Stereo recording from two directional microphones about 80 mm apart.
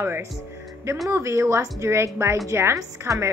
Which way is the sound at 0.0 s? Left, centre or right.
Right.